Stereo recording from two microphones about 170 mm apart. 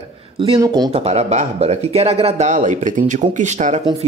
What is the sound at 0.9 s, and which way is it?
Speech, 40° right (ahead or behind).